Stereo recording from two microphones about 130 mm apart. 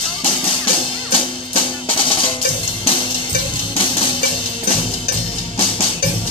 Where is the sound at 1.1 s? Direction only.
40° left (ahead or behind).